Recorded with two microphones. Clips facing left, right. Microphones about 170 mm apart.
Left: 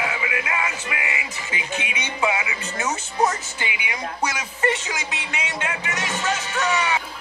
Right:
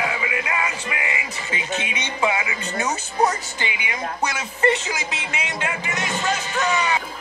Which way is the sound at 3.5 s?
10° left (ahead or behind).